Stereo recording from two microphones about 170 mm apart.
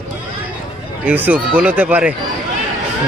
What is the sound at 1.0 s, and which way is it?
Speech, 10° right (ahead or behind).